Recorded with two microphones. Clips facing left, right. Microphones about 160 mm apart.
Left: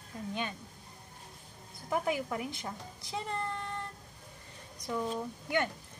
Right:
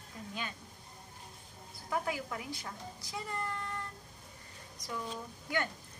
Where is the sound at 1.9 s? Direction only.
20° left (ahead or behind).